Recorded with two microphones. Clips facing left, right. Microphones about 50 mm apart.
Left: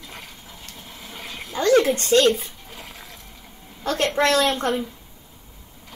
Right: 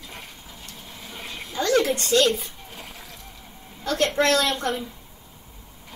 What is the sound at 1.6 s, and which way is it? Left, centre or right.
Speech, left.